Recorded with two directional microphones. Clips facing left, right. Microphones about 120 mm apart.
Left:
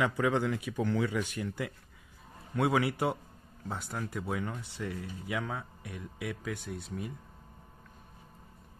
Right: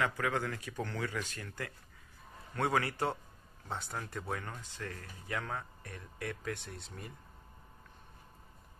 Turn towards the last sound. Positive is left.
turn(degrees=5)  # may be behind; listen again after turning